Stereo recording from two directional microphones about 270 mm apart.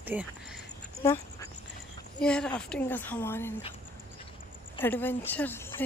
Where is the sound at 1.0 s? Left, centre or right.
Centre.